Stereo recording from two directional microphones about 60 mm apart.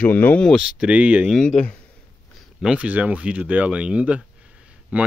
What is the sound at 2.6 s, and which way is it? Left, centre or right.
Speech, right.